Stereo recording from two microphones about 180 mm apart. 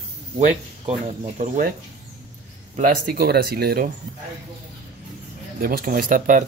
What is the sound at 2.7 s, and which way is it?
Speech, 55° right (ahead or behind).